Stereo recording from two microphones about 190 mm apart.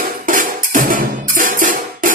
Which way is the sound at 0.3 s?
45° right (ahead or behind).